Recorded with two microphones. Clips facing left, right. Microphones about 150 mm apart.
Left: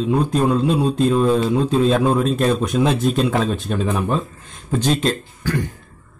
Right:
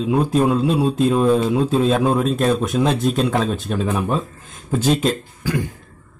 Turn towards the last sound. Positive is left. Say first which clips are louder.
# even
turn(degrees=-10)  # may be behind; listen again after turning